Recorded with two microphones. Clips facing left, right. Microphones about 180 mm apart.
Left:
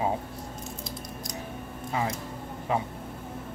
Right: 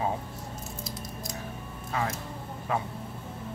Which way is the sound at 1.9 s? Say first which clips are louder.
Left 1 dB; 20° left (ahead or behind).